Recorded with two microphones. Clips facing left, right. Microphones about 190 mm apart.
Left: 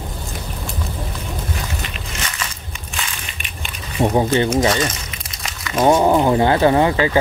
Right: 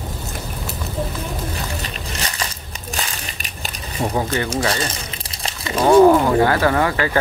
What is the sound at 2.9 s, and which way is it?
Crushing, 40° right (ahead or behind).